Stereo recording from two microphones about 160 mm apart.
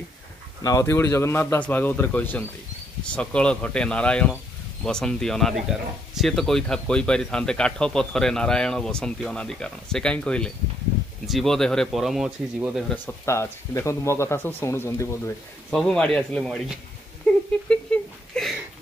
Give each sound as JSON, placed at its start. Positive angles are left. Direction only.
{"t": 0.6, "sound": "speech", "side_deg": 20}
{"t": 12.9, "sound": "speech", "side_deg": 15}
{"t": 15.7, "sound": "speech", "side_deg": 5}
{"t": 17.3, "sound": "a sound", "side_deg": 5}